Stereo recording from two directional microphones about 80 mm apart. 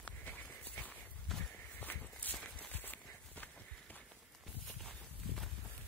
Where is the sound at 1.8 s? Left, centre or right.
Left.